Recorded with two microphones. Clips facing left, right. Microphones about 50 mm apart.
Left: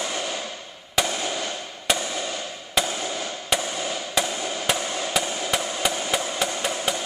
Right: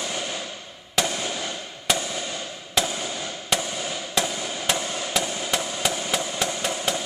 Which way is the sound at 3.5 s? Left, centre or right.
Centre.